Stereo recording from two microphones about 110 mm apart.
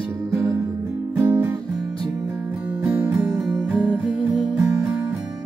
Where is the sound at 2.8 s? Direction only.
15° right (ahead or behind).